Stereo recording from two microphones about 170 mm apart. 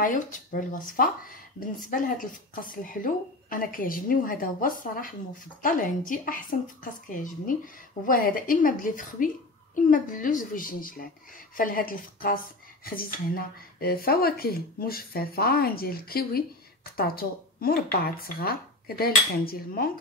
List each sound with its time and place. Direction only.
0.0 s a woman's voice: 50° left (ahead or behind)